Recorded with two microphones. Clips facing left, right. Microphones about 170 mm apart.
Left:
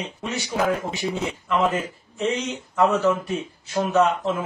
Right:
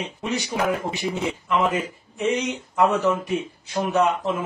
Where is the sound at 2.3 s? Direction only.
15° right (ahead or behind).